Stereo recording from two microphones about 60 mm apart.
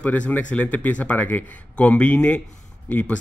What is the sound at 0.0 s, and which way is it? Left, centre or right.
Speech, left.